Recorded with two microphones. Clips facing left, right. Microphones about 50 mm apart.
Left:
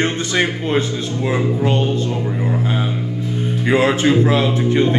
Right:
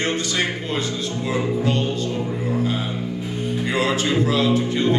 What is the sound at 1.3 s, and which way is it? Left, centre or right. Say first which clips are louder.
Speech: left 3 dB; left.